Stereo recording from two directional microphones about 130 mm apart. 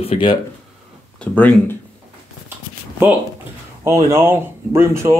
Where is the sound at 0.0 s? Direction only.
45° left (ahead or behind).